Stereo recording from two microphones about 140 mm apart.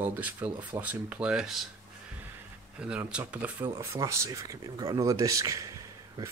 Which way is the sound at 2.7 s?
5° right (ahead or behind).